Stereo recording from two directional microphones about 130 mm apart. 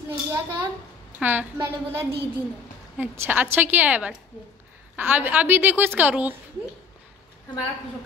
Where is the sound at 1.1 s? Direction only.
10° right (ahead or behind).